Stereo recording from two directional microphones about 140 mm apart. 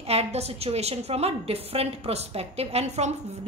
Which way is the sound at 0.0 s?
50° right (ahead or behind).